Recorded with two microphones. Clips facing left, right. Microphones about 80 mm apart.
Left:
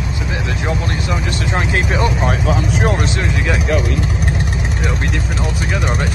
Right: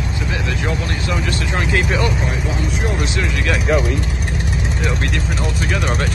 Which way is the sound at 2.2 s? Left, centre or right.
Left.